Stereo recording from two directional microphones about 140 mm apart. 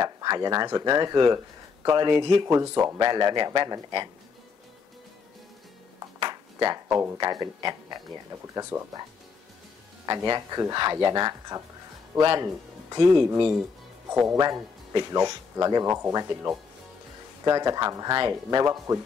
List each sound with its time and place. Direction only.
0.0 s speech: 30° right (ahead or behind)
2.4 s speech: 20° right (ahead or behind)
6.1 s music: 30° right (ahead or behind)
6.9 s speech: 15° right (ahead or behind)
7.2 s speech: 30° right (ahead or behind)
8.3 s speech: 15° right (ahead or behind)
10.0 s speech: 30° right (ahead or behind)